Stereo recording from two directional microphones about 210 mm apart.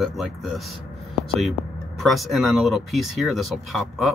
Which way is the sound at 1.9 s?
Centre (ahead or behind).